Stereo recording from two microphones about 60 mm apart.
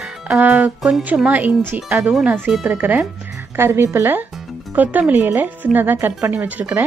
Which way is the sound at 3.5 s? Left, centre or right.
Right.